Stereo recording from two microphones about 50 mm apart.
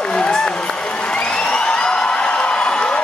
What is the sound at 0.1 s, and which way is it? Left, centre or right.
Crowd, centre.